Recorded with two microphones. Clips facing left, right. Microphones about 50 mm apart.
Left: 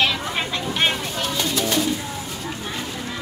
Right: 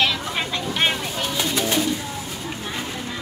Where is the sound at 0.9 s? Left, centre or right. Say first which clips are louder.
Even; centre.